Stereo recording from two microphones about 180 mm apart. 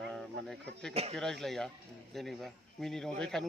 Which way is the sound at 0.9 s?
35° right (ahead or behind).